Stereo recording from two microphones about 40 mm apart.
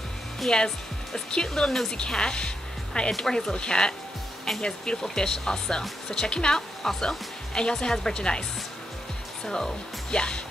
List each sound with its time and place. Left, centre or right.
0.5 s speech: centre
3.1 s speech: centre